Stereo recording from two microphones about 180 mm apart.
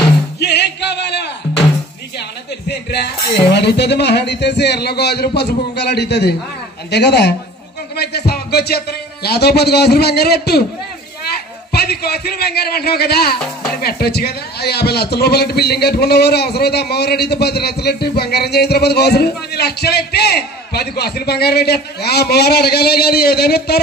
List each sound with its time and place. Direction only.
0.4 s a sound: 70° left (ahead or behind)
2.7 s speech: 65° left (ahead or behind)
7.9 s music: 65° left (ahead or behind)
8.3 s a man's voice: 60° left (ahead or behind)
11.7 s a man's voice: 60° left (ahead or behind)